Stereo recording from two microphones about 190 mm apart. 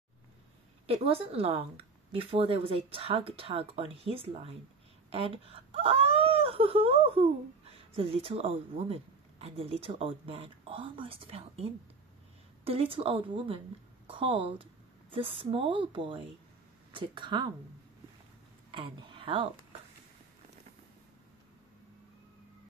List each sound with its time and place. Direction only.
0.8 s speech: 30° right (ahead or behind)
12.6 s speech: 30° right (ahead or behind)
18.7 s speech: 25° right (ahead or behind)